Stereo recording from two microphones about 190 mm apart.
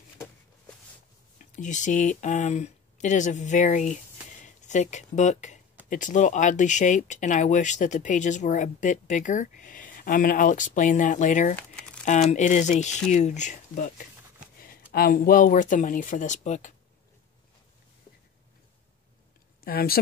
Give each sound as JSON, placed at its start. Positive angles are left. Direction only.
{"t": 1.4, "sound": "speech", "side_deg": 40}
{"t": 19.6, "sound": "speech", "side_deg": 50}